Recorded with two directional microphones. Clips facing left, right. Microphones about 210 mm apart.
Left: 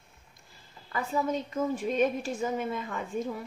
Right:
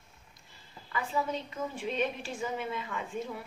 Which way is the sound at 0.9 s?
45° left (ahead or behind).